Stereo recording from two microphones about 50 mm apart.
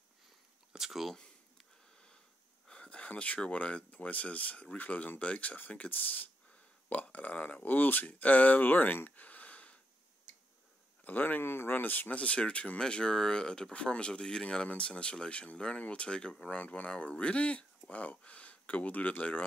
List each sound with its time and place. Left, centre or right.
0.7 s a sound: centre
1.1 s a sound: centre
3.3 s speech: left
11.1 s speech: left
12.2 s speech: left
16.5 s speech: left